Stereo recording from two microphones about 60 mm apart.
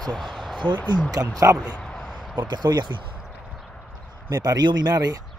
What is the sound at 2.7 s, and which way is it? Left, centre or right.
Speech, right.